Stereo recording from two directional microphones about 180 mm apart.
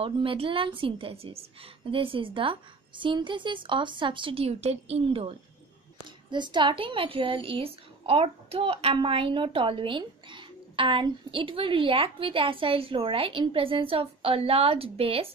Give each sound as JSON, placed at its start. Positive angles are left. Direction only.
{"t": 0.0, "sound": "a woman's voice", "side_deg": -30}
{"t": 6.3, "sound": "a woman's voice", "side_deg": -25}